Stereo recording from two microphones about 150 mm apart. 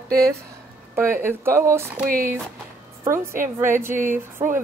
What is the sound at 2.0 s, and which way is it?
Speech, 75° right (ahead or behind).